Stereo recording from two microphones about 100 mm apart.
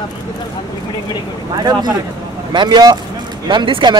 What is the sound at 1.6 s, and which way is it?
Speech, 45° right (ahead or behind).